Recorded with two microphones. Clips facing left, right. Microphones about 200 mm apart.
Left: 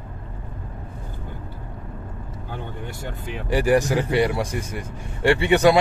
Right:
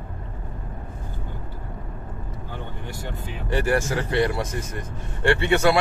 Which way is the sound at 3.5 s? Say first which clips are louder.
Left 4 dB; 15° left (ahead or behind).